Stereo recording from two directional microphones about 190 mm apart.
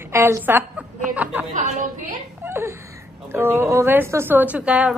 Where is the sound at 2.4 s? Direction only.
10° right (ahead or behind).